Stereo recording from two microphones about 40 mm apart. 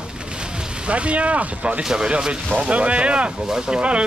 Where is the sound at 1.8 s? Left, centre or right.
Centre.